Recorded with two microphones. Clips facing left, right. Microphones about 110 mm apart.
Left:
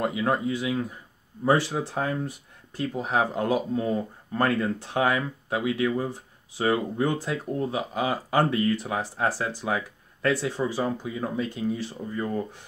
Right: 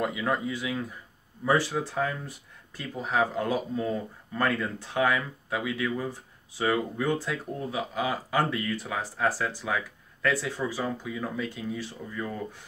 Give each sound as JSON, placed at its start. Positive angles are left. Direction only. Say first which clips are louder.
{"t": 0.0, "sound": "speech", "louder": "left 3 dB", "side_deg": 35}
{"t": 0.5, "sound": "speech", "louder": "left 4 dB", "side_deg": 25}
{"t": 2.9, "sound": "speech", "louder": "even", "side_deg": 25}
{"t": 4.4, "sound": "speech", "louder": "left 3 dB", "side_deg": 35}